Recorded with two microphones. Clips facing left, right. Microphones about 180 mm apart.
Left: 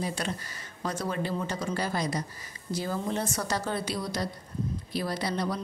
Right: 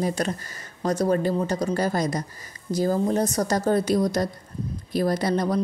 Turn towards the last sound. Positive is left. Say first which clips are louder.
# right 7 dB
turn(degrees=-45)  # may be behind; listen again after turning